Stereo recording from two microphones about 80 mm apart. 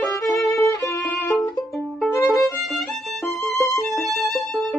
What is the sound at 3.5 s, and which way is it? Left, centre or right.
Music, left.